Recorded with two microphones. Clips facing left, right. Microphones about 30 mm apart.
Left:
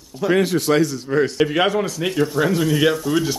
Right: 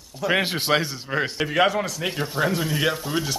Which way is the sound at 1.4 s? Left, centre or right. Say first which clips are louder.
Left 3 dB; centre.